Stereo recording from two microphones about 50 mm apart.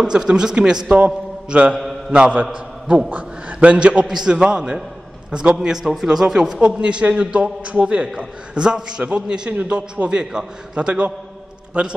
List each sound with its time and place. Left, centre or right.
0.0 s a man's voice: centre